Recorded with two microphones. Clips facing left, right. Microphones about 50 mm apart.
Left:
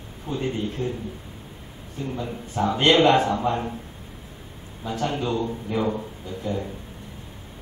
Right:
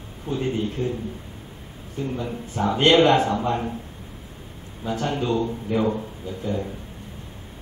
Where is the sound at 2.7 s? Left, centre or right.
Centre.